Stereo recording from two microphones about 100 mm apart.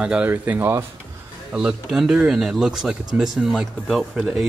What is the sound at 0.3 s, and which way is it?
Speech, 20° right (ahead or behind).